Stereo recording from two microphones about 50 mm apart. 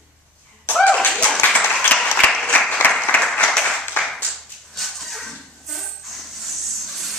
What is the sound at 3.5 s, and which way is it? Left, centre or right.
Clapping, centre.